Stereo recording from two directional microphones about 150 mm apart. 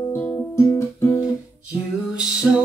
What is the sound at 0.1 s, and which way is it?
Music, 15° left (ahead or behind).